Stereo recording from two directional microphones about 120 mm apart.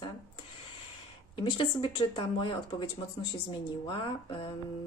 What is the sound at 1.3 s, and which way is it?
Speech, 45° left (ahead or behind).